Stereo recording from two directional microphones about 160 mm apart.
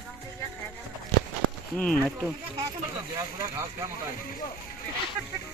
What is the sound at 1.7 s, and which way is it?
Speech, 5° left (ahead or behind).